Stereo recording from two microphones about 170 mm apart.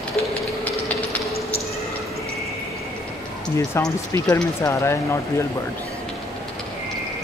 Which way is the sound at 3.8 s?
15° left (ahead or behind).